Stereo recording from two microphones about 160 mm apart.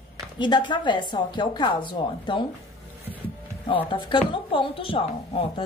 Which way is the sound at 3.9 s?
30° left (ahead or behind).